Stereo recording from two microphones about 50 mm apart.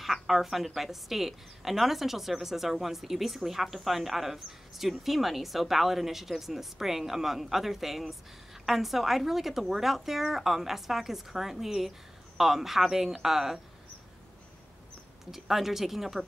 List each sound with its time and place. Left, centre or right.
0.0 s a sound: centre
0.7 s speech: centre
15.3 s speech: centre